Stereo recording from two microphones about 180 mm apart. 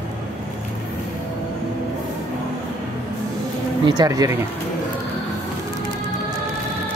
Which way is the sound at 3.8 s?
20° right (ahead or behind).